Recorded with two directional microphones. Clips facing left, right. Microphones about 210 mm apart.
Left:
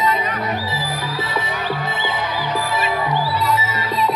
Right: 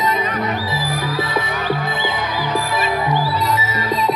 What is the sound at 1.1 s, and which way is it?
Music, 15° right (ahead or behind).